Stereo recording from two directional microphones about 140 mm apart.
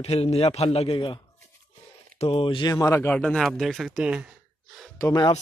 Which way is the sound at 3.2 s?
5° left (ahead or behind).